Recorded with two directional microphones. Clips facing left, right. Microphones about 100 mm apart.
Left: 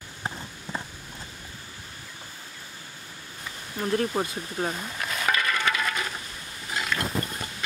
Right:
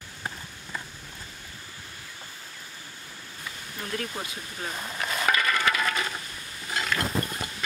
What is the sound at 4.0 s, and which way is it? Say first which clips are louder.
Speech: left 8 dB; 35° left (ahead or behind).